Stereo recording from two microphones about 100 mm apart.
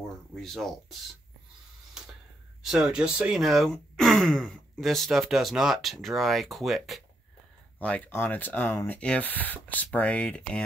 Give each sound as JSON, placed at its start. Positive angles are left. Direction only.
{"t": 0.4, "sound": "speech", "side_deg": 5}
{"t": 2.6, "sound": "speech", "side_deg": -5}
{"t": 7.8, "sound": "speech", "side_deg": 15}